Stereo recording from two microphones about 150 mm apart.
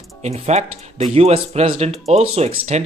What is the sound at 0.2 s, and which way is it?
Speech, 45° right (ahead or behind).